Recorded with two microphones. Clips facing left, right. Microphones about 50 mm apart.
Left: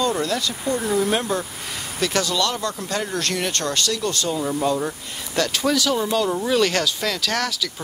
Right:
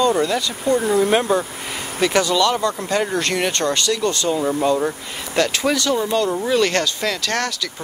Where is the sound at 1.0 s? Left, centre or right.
Right.